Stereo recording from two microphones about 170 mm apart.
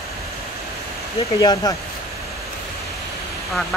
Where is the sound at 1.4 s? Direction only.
20° left (ahead or behind).